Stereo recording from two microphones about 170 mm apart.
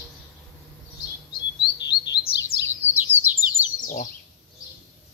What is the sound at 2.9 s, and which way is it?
Bird, 15° right (ahead or behind).